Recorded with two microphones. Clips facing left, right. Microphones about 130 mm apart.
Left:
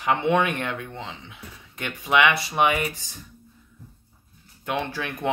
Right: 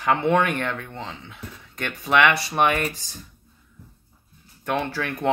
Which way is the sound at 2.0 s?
15° left (ahead or behind).